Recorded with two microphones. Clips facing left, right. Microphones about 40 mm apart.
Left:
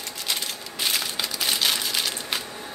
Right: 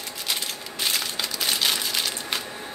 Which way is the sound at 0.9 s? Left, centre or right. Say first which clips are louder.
Even; centre.